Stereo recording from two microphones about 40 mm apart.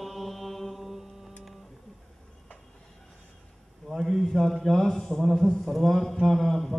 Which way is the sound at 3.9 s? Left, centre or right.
Centre.